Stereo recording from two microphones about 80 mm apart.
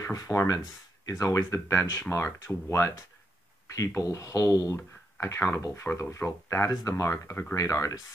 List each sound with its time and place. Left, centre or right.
0.0 s speech: left
6.7 s speech: left